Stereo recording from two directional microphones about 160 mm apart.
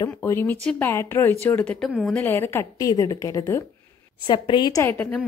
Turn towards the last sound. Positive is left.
turn(degrees=10)  # may be behind; listen again after turning